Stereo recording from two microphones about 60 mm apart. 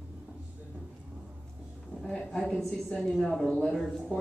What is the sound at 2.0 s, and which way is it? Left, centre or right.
Speech, centre.